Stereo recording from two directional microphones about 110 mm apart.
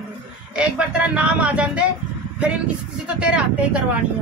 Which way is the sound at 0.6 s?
15° right (ahead or behind).